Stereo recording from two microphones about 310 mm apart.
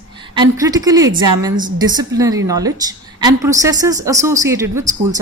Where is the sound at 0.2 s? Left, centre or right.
Centre.